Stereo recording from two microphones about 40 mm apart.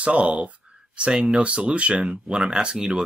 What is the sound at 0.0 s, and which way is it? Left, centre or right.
Speech, right.